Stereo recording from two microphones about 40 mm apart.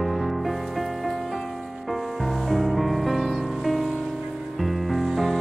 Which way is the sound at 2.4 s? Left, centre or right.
Centre.